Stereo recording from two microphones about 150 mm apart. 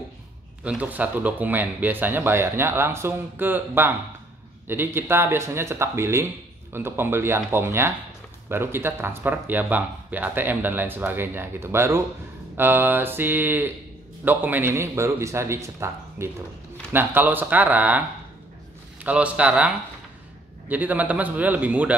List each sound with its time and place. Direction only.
0.7 s speech: 10° right (ahead or behind)